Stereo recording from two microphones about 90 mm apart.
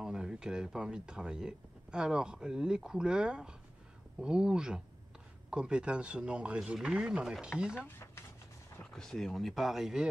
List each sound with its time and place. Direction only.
0.0 s speech: 10° right (ahead or behind)
7.7 s speech: 25° left (ahead or behind)
8.9 s speech: 5° left (ahead or behind)